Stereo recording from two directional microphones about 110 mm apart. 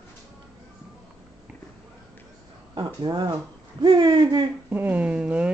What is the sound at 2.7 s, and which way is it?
Speech, 40° right (ahead or behind).